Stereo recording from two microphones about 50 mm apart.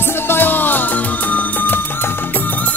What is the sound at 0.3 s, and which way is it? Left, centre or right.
Music, left.